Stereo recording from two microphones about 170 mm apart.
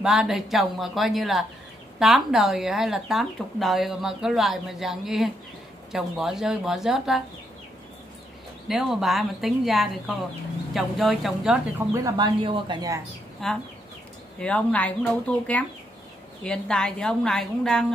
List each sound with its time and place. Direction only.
0.0 s speech: centre (ahead or behind)
8.6 s speech: centre (ahead or behind)
11.9 s speech: 20° right (ahead or behind)
13.4 s speech: centre (ahead or behind)